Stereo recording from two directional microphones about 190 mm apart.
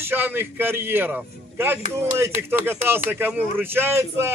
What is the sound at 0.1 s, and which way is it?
Speech, 10° right (ahead or behind).